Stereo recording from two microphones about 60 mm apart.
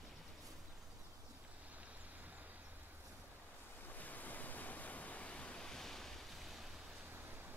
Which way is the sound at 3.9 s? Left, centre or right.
Left.